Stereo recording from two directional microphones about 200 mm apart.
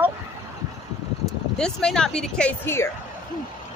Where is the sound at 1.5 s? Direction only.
5° left (ahead or behind).